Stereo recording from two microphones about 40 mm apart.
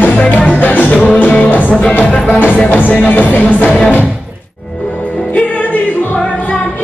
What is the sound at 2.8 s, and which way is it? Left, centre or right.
Music, left.